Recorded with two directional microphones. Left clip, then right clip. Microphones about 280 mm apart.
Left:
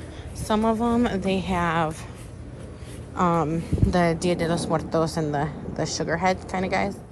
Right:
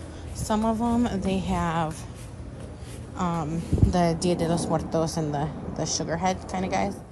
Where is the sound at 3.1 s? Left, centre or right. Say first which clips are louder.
Left 7 dB; centre.